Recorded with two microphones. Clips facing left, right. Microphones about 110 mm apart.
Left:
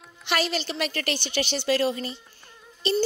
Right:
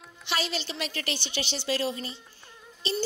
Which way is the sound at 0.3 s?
60° left (ahead or behind).